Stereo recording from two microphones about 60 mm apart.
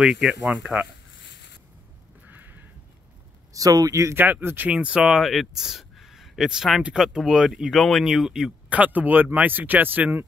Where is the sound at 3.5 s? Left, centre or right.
Right.